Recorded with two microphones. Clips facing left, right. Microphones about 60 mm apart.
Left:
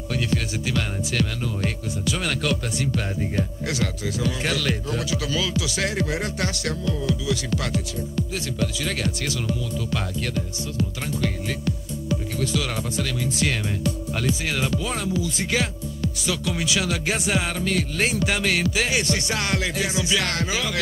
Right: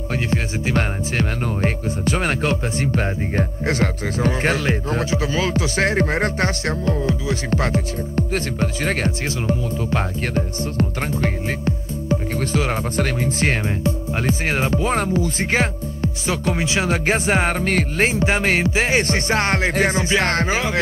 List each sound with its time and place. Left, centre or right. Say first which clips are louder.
0.1 s music: right 2 dB; right